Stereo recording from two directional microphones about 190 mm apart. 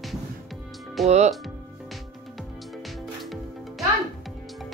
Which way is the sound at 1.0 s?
35° right (ahead or behind).